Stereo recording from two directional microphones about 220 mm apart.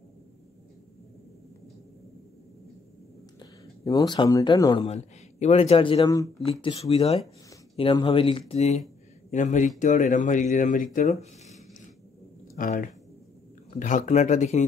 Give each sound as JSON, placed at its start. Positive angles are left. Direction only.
{"t": 3.8, "sound": "speech", "side_deg": 15}
{"t": 4.9, "sound": "speech", "side_deg": 30}
{"t": 12.5, "sound": "speech", "side_deg": 35}